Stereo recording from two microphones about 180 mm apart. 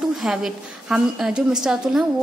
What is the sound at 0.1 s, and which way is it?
A woman's voice, centre (ahead or behind).